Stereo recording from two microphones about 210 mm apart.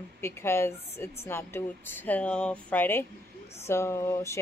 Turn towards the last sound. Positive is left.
turn(degrees=15)  # may be behind; listen again after turning